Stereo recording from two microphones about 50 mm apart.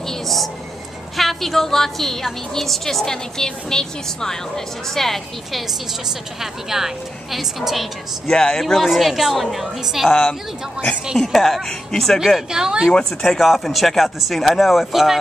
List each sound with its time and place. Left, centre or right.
0.1 s a woman's voice: centre
6.4 s a woman's voice: centre
8.3 s speech: centre
8.5 s a woman's voice: centre
11.1 s a woman's voice: centre
12.4 s a woman's voice: centre